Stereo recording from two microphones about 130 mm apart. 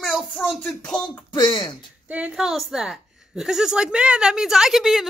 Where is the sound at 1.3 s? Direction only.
35° left (ahead or behind).